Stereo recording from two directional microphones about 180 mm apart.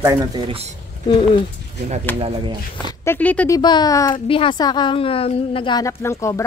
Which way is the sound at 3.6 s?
25° left (ahead or behind).